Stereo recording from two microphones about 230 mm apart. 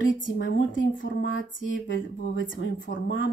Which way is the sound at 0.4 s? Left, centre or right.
Left.